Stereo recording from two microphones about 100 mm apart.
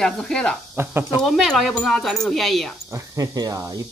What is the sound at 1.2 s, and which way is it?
Speech, centre (ahead or behind).